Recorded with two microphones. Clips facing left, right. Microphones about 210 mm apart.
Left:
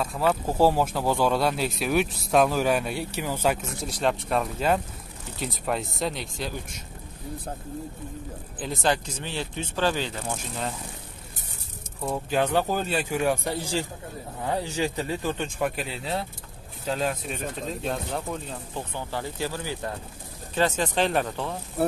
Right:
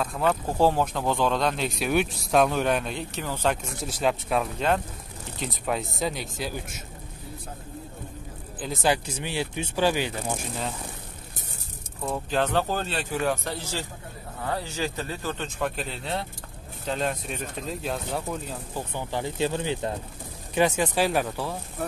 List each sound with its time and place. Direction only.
0.0 s speech: centre (ahead or behind)
3.6 s speech: centre (ahead or behind)
8.5 s speech: centre (ahead or behind)
12.0 s speech: 10° left (ahead or behind)
18.9 s speech: 20° right (ahead or behind)